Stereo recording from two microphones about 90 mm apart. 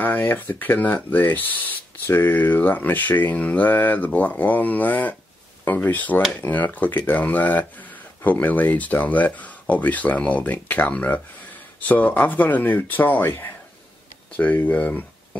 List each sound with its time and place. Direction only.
0.0 s speech: 20° left (ahead or behind)